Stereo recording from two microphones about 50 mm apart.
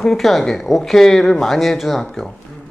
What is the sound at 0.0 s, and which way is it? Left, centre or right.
Speech, centre.